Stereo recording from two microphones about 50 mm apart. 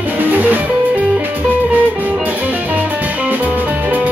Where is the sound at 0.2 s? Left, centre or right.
Right.